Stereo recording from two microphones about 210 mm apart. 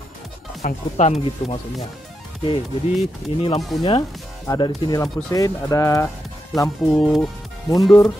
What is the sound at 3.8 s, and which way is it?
Speech, 25° left (ahead or behind).